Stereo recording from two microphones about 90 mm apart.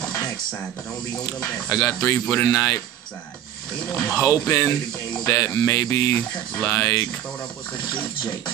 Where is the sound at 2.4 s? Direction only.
40° left (ahead or behind).